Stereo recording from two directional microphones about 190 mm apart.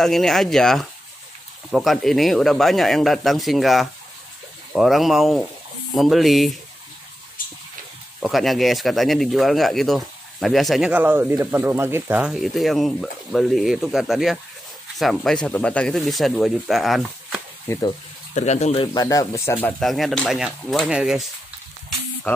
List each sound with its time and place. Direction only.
0.0 s speech: centre (ahead or behind)
8.2 s speech: centre (ahead or behind)
17.7 s speech: 10° left (ahead or behind)
18.3 s speech: 35° left (ahead or behind)
18.9 s speech: 15° left (ahead or behind); by 21.3 s 5° right (ahead or behind)